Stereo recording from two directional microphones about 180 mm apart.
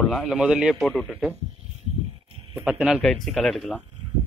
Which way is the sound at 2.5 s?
5° right (ahead or behind).